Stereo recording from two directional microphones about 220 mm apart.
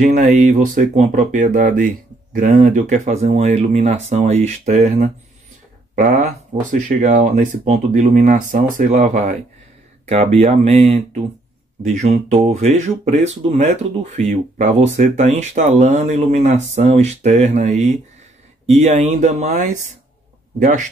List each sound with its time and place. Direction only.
0.0 s speech: 35° right (ahead or behind)
6.6 s speech: 35° right (ahead or behind)